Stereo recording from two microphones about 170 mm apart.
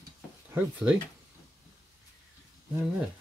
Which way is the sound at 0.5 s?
5° right (ahead or behind).